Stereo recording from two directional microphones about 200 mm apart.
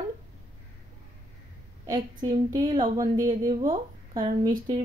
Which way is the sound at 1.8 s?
20° right (ahead or behind).